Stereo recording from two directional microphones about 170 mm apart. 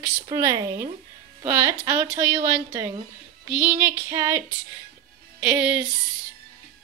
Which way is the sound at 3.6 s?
15° right (ahead or behind).